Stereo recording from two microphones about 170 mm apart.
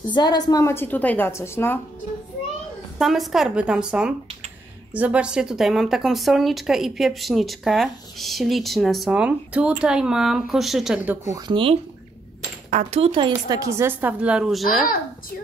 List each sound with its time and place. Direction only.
0.1 s a woman's voice: 25° left (ahead or behind)
3.0 s speech: centre (ahead or behind)
11.1 s speech: 20° right (ahead or behind)
12.6 s speech: 40° right (ahead or behind); by 14.9 s centre (ahead or behind)